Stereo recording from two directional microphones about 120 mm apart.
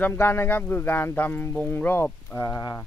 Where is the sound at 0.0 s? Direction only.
20° left (ahead or behind).